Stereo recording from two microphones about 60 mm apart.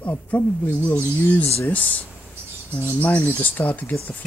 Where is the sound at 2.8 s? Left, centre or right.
Left.